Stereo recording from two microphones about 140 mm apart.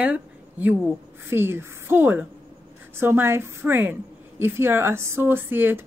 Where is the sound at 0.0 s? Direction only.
10° right (ahead or behind).